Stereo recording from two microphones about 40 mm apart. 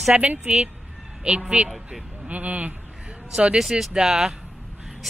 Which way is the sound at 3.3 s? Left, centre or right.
Right.